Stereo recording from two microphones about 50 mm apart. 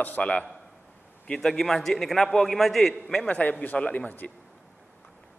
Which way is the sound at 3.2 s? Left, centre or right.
Left.